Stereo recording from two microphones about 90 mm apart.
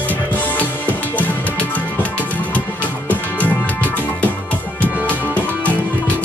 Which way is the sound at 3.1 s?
15° left (ahead or behind).